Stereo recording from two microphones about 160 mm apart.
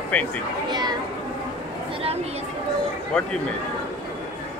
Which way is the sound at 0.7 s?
25° right (ahead or behind).